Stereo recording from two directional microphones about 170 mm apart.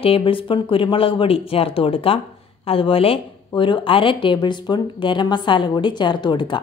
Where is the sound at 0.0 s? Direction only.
35° left (ahead or behind).